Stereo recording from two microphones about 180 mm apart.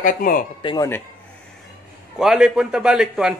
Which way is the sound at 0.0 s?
50° left (ahead or behind).